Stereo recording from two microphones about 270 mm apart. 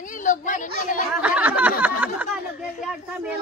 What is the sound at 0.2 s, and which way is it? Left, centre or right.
Speech, left.